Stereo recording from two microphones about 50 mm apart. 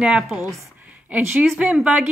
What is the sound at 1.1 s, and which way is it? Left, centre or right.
Speech, right.